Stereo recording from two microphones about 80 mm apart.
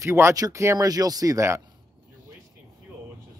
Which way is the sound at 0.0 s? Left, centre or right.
Right.